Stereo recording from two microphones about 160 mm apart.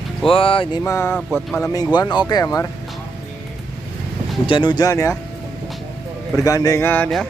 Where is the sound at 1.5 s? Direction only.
15° left (ahead or behind).